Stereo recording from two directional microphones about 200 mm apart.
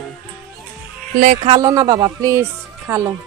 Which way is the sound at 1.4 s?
20° right (ahead or behind).